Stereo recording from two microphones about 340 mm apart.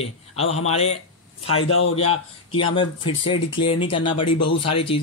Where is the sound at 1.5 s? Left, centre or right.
Left.